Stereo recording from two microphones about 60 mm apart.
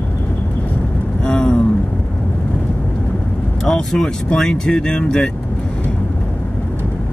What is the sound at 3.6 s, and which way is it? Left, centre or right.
Speech, centre.